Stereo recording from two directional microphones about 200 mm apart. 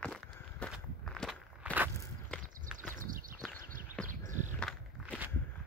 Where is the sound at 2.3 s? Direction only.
5° left (ahead or behind).